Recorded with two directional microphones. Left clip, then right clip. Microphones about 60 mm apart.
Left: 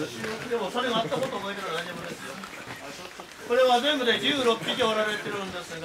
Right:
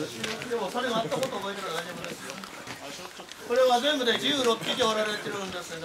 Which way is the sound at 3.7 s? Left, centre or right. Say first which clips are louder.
Left 1 dB; right.